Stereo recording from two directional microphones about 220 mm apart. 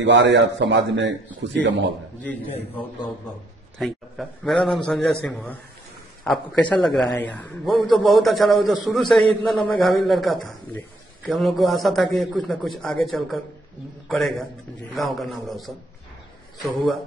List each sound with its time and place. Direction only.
0.0 s a man's voice: 55° right (ahead or behind)
3.7 s a man's voice: centre (ahead or behind)